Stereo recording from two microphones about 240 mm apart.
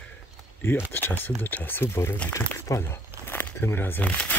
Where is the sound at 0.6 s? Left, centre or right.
Centre.